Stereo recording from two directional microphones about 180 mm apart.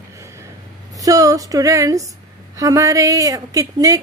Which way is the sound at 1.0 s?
20° right (ahead or behind).